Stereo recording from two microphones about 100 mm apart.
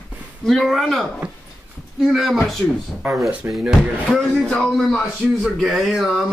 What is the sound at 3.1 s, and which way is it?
Speech, 30° right (ahead or behind).